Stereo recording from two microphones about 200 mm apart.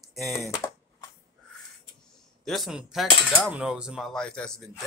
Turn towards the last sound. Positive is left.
turn(degrees=5)  # may be behind; listen again after turning